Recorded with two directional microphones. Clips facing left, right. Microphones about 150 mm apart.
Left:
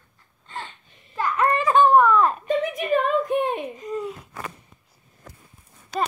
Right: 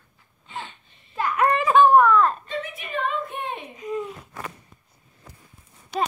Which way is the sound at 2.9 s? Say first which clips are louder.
Left 7 dB; 45° left (ahead or behind).